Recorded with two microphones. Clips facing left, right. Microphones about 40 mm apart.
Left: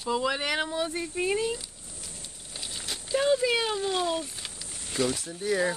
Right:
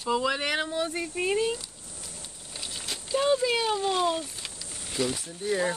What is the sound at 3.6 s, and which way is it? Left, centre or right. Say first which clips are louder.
Speech: right 2 dB; centre.